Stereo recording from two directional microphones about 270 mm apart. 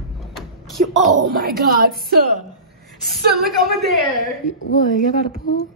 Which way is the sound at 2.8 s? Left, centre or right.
Centre.